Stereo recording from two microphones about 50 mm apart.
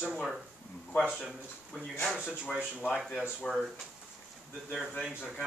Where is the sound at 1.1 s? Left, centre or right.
Centre.